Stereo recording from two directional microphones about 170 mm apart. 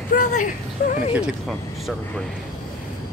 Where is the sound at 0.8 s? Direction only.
60° left (ahead or behind).